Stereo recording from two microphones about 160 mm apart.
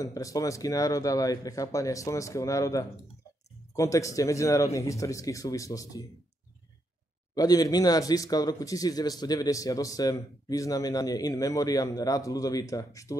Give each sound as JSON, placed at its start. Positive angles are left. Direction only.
{"t": 0.0, "sound": "speech", "side_deg": 20}
{"t": 7.3, "sound": "speech", "side_deg": 25}